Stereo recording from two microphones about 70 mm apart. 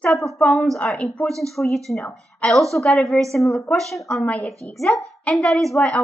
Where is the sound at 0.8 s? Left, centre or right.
Centre.